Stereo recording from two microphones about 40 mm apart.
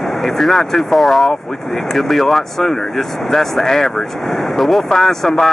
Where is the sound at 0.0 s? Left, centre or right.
Centre.